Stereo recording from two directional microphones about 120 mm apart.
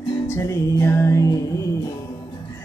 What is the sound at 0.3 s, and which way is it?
Music, 25° left (ahead or behind).